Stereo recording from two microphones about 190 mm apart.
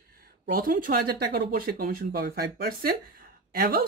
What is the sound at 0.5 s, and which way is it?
Speech, 50° right (ahead or behind).